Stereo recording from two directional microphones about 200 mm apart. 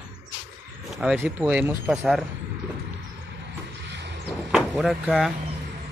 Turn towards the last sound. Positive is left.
turn(degrees=0)  # may be behind; listen again after turning